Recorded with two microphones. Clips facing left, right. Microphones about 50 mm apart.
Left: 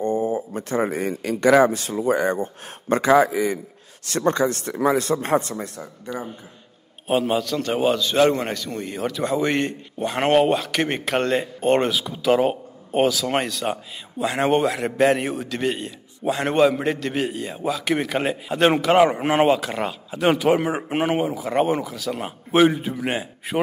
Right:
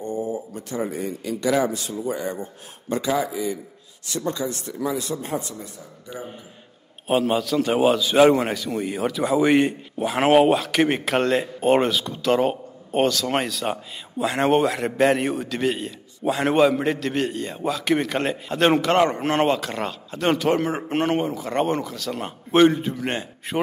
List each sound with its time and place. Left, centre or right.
0.0 s a man's voice: left
7.1 s a man's voice: centre